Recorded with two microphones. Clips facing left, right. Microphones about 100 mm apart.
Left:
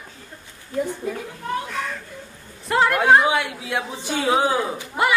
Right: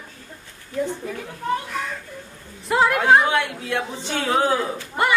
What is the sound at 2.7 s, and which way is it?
A woman's voice, centre (ahead or behind).